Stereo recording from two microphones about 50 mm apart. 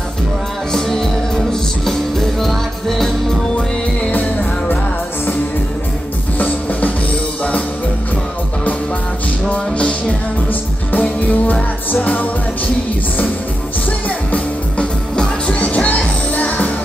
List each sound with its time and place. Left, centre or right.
0.7 s music: centre
4.1 s music: left
6.3 s drum: left
9.5 s music: left
10.9 s music: left
14.0 s music: left